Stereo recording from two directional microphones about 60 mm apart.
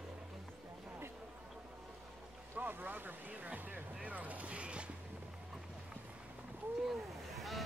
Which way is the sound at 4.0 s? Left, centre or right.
Right.